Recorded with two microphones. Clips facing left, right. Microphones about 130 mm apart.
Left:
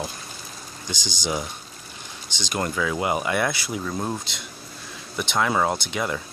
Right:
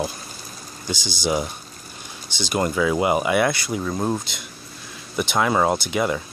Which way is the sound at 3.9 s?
10° right (ahead or behind).